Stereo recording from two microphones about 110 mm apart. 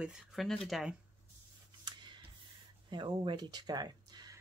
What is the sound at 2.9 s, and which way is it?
Speech, 45° right (ahead or behind).